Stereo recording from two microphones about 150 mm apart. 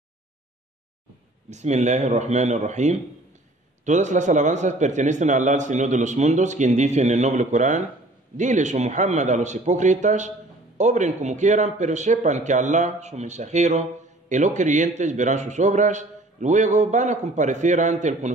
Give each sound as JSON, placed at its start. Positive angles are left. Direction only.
{"t": 1.5, "sound": "speech", "side_deg": -50}